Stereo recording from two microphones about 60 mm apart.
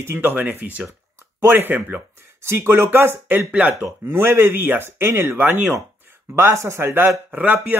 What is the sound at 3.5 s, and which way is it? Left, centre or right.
Speech, right.